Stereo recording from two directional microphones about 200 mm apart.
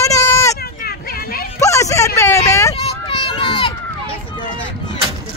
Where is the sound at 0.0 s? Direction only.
15° left (ahead or behind).